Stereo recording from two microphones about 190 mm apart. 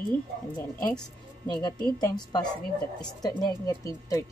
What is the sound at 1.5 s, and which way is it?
Speech, 20° left (ahead or behind).